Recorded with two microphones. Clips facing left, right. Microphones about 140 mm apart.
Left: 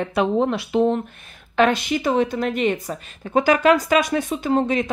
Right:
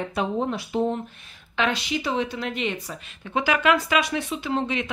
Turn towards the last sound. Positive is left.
turn(degrees=45)  # may be behind; listen again after turning